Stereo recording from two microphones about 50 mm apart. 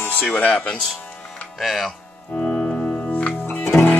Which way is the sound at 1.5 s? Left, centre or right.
Centre.